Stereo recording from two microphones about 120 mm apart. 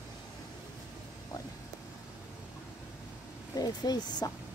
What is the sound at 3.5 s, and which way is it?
Speech, 35° left (ahead or behind).